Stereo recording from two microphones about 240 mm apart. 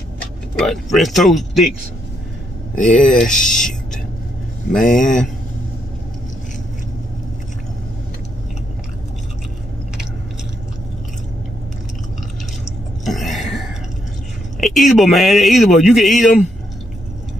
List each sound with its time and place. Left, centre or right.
0.6 s speech: centre
3.0 s speech: centre
4.7 s speech: left
13.0 s burping: centre
14.6 s speech: centre